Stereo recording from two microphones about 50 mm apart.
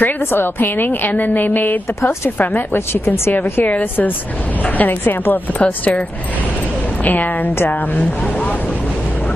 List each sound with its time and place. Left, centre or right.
0.0 s a woman's voice: left
3.6 s a woman's voice: left
5.6 s speech: left
7.1 s a woman's voice: left